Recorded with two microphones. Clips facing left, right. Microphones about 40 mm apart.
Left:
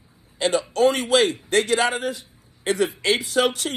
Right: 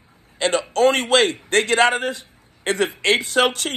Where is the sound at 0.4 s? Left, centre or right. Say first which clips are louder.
Right 2 dB; right.